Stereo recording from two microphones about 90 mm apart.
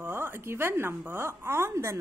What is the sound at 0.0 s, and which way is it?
A woman's voice, 25° right (ahead or behind).